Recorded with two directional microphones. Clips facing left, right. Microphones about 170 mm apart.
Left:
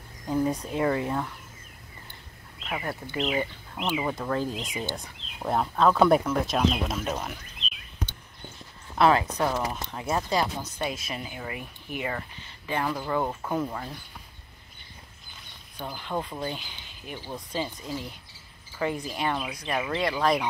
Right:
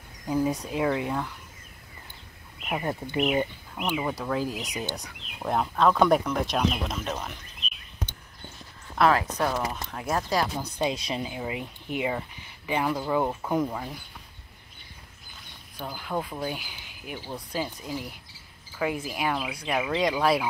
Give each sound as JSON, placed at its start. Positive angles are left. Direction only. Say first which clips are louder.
{"t": 0.3, "sound": "speech", "louder": "even", "side_deg": 0}
{"t": 2.6, "sound": "speech", "louder": "right 3 dB", "side_deg": -15}
{"t": 3.8, "sound": "speech", "louder": "even", "side_deg": 0}
{"t": 8.9, "sound": "speech", "louder": "left 1 dB", "side_deg": 0}
{"t": 10.6, "sound": "speech", "louder": "right 4 dB", "side_deg": -20}
{"t": 15.8, "sound": "speech", "louder": "right 1 dB", "side_deg": -5}